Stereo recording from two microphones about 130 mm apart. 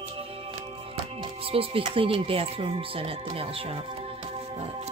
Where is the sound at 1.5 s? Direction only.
45° right (ahead or behind).